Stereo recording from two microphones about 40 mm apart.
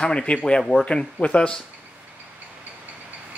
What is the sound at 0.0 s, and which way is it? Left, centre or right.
Speech, left.